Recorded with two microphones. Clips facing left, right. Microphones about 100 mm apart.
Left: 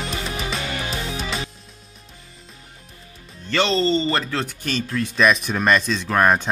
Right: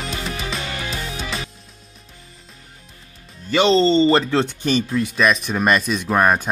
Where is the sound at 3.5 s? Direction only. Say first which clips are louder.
Right 4 dB; 20° right (ahead or behind).